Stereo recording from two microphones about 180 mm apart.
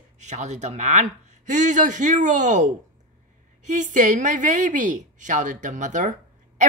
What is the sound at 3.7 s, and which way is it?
Speech, 45° right (ahead or behind).